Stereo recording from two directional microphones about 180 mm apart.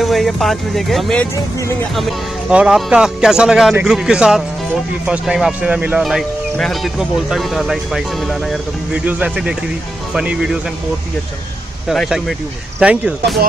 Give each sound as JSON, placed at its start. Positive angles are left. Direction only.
{"t": 0.0, "sound": "speech", "side_deg": 0}
{"t": 2.5, "sound": "speech", "side_deg": -5}
{"t": 11.9, "sound": "speech", "side_deg": 0}